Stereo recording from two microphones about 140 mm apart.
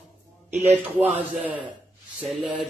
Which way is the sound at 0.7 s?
10° right (ahead or behind).